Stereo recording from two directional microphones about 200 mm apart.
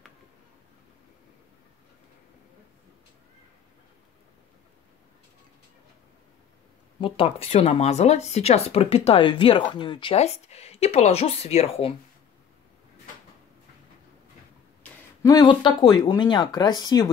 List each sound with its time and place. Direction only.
7.0 s speech: 30° left (ahead or behind)
14.8 s speech: 20° left (ahead or behind)